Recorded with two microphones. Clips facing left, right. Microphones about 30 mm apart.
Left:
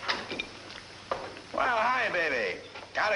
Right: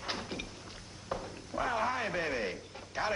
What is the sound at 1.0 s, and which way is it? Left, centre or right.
A man's voice, left.